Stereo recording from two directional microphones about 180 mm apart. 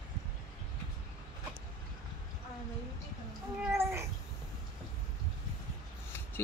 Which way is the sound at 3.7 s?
15° right (ahead or behind).